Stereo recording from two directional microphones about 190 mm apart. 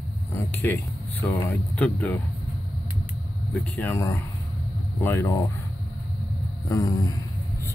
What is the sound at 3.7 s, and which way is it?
Speech, 10° left (ahead or behind).